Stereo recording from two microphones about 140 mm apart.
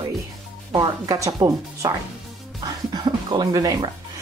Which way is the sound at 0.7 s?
25° right (ahead or behind).